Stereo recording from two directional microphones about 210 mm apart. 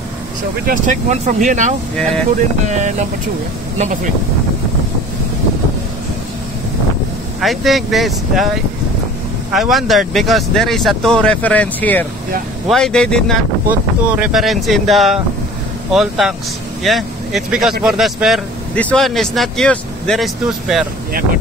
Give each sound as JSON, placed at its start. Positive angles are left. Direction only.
{"t": 0.7, "sound": "speech", "side_deg": -35}
{"t": 7.3, "sound": "speech", "side_deg": 0}
{"t": 9.5, "sound": "speech", "side_deg": 0}
{"t": 13.7, "sound": "speech", "side_deg": -5}